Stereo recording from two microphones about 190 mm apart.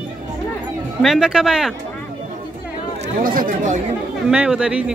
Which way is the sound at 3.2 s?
45° right (ahead or behind).